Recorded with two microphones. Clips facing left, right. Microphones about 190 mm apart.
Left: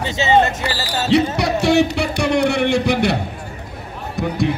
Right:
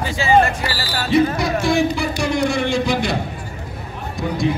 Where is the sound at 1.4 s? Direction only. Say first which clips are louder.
Left 2 dB; 70° left (ahead or behind).